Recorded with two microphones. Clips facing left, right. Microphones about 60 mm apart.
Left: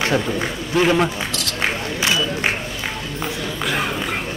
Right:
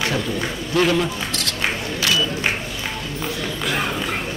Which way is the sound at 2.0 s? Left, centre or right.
Left.